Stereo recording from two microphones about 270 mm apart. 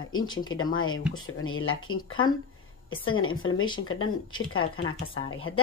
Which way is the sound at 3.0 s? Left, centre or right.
Left.